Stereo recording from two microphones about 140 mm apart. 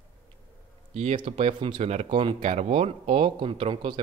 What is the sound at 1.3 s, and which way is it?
Speech, 55° right (ahead or behind).